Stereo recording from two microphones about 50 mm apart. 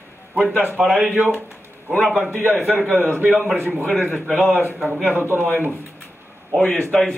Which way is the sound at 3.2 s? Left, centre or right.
Right.